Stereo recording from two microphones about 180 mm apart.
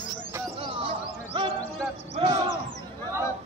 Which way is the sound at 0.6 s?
30° right (ahead or behind).